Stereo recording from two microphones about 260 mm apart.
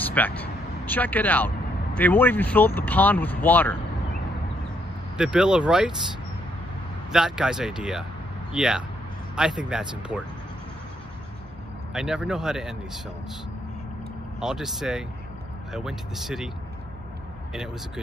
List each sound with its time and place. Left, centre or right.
0.0 s vehicle: centre
0.4 s speech: centre
5.1 s speech: centre
7.1 s speech: centre
11.9 s speech: centre
14.4 s speech: centre